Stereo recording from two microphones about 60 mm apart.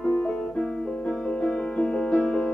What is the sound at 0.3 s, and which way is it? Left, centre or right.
Music, centre.